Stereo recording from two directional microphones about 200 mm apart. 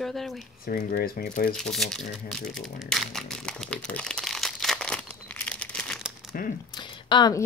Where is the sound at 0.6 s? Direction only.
45° left (ahead or behind).